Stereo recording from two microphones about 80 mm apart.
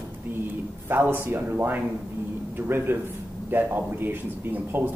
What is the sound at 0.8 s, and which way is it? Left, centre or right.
A man's voice, right.